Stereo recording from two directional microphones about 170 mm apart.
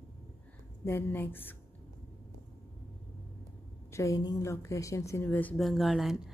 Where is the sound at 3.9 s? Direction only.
20° left (ahead or behind).